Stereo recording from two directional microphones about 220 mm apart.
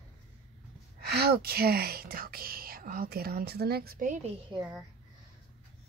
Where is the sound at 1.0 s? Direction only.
45° right (ahead or behind).